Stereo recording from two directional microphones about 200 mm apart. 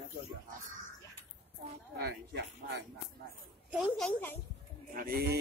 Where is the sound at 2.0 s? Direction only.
55° right (ahead or behind).